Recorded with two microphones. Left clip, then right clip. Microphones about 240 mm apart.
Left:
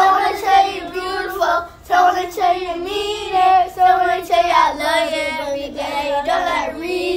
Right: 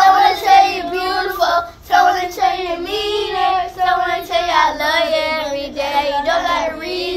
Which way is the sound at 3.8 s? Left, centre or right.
Left.